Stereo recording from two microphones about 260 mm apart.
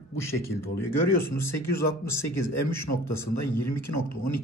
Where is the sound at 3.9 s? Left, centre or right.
Left.